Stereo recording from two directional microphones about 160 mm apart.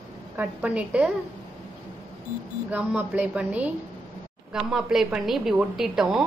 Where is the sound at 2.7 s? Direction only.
10° right (ahead or behind).